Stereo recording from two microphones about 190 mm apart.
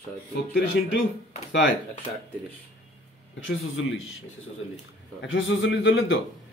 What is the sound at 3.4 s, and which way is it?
Speech, 90° left.